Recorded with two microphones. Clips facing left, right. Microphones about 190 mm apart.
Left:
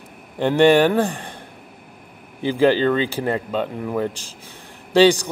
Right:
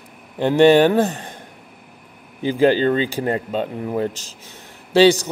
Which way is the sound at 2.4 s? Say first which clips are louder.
Right 1 dB; 15° right (ahead or behind).